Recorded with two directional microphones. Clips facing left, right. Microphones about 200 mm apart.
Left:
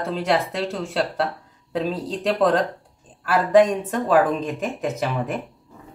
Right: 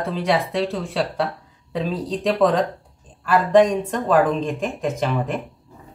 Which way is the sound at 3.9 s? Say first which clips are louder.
Left 1 dB; 5° left (ahead or behind).